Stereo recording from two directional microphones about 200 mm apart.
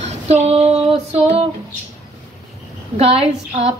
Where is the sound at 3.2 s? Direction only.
30° right (ahead or behind).